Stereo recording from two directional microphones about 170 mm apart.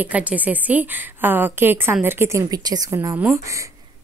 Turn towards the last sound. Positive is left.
turn(degrees=-15)  # may be behind; listen again after turning